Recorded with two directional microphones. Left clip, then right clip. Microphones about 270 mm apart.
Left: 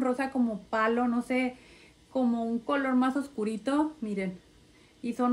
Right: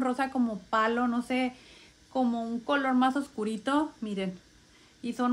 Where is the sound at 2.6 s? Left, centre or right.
Centre.